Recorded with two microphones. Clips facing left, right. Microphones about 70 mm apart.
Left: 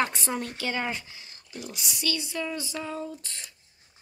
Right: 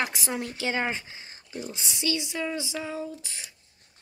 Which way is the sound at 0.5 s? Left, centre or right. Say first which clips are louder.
Right 2 dB; centre.